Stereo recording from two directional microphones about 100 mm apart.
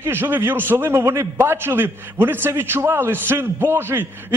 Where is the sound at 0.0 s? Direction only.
20° right (ahead or behind).